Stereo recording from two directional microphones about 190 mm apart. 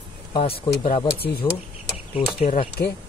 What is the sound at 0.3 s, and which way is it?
Speech, 30° left (ahead or behind).